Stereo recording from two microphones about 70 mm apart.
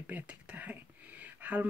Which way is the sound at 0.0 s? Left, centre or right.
Centre.